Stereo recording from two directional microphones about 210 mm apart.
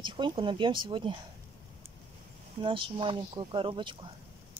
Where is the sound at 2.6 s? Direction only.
25° right (ahead or behind).